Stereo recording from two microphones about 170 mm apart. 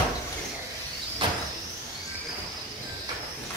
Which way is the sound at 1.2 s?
30° right (ahead or behind).